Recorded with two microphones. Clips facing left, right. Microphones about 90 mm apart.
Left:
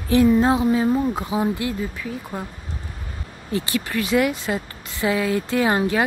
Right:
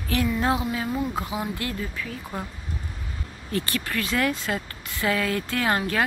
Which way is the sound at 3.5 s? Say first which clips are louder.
Left 4 dB; 15° left (ahead or behind).